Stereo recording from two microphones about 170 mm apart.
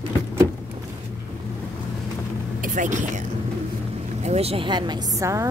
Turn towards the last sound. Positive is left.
turn(degrees=-20)  # may be behind; listen again after turning